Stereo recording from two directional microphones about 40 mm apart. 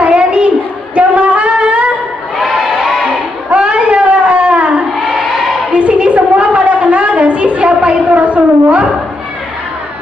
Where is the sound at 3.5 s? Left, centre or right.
Right.